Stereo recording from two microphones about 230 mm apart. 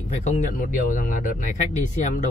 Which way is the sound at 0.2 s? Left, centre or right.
Left.